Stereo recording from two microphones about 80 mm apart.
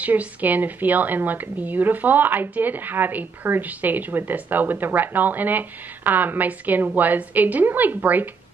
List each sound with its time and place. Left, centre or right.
0.0 s a woman's voice: right